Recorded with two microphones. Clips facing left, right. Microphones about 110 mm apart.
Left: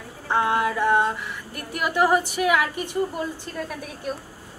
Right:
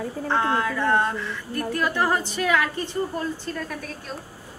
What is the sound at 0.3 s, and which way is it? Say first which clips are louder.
Speech: left 2 dB; 15° left (ahead or behind).